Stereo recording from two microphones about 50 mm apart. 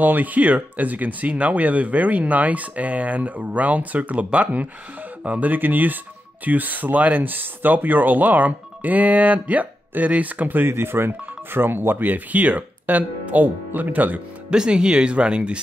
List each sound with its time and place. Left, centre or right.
0.0 s speech: right
10.7 s speech: right
14.5 s speech: centre